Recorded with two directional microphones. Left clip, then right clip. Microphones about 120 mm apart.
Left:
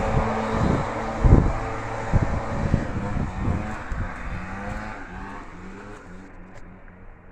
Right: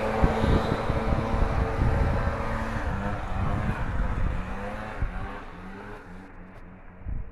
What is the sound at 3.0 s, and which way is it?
Vehicle, 30° right (ahead or behind).